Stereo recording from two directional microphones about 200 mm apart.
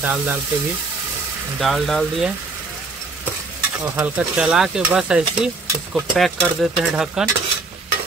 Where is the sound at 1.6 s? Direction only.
Centre (ahead or behind).